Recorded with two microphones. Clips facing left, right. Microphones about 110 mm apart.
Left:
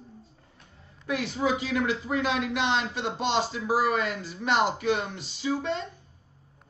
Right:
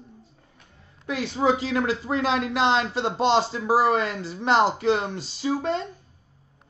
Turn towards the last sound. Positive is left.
turn(degrees=-40)  # may be behind; listen again after turning